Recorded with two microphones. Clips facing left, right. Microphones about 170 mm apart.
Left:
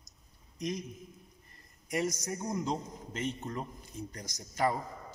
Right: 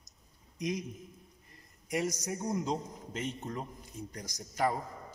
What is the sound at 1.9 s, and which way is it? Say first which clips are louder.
A man's voice: even; 10° right (ahead or behind).